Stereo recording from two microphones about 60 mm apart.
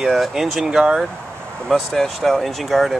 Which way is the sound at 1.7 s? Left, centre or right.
Centre.